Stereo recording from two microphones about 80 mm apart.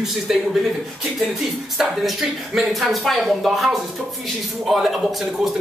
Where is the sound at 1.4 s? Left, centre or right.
Centre.